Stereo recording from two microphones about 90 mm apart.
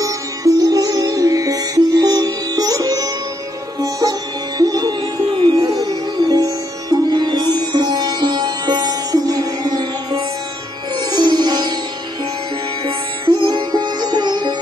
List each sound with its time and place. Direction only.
0.0 s music: 40° right (ahead or behind)
4.6 s music: 45° right (ahead or behind)
5.3 s music: 55° right (ahead or behind)
12.8 s music: 60° right (ahead or behind)